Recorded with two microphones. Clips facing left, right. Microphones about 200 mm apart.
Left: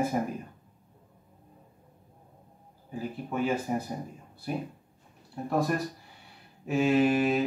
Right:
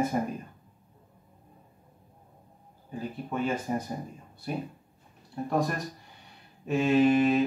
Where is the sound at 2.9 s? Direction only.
5° left (ahead or behind).